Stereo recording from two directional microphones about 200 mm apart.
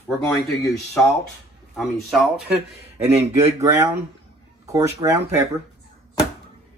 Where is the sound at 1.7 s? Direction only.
Centre (ahead or behind).